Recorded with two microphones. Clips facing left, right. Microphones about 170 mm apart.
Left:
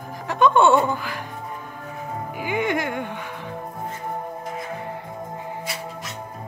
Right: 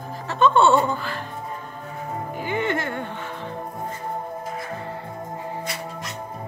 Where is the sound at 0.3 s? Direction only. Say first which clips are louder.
Left 1 dB; 15° left (ahead or behind).